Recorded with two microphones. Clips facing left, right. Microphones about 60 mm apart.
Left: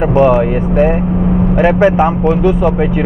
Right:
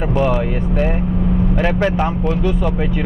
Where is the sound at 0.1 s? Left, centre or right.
Left.